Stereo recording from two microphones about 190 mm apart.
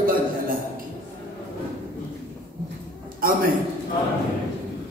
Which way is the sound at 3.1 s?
50° right (ahead or behind).